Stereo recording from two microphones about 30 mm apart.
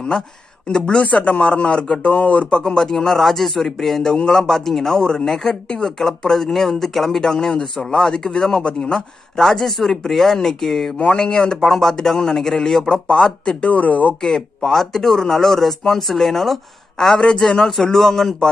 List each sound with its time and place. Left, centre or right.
0.7 s speech: left
0.9 s speech: left
2.5 s speech: left
4.1 s speech: left
5.0 s speech: left
7.2 s speech: centre
11.1 s speech: left
11.6 s speech: centre; by 13.6 s left
13.6 s speech: left
14.2 s speech: centre
17.1 s speech: left
17.6 s speech: centre